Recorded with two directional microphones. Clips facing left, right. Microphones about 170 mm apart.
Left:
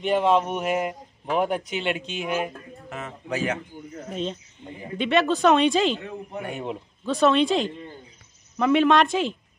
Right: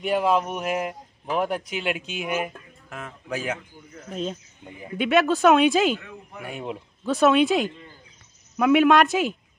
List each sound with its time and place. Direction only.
0.0 s a man's voice: 5° right (ahead or behind)
5.9 s speech: 30° left (ahead or behind)
6.4 s a man's voice: centre (ahead or behind)